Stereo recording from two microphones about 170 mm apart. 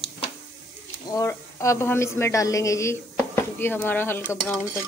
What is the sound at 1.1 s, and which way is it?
A woman's voice, 20° left (ahead or behind).